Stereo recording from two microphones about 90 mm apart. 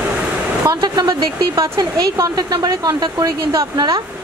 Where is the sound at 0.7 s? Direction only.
55° right (ahead or behind).